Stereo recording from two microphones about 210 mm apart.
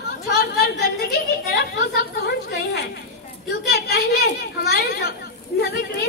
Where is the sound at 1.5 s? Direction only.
50° left (ahead or behind).